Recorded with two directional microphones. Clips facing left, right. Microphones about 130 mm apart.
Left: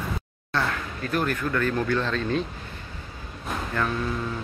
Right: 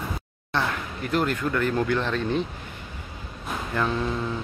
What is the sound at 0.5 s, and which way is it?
Speech, 20° right (ahead or behind).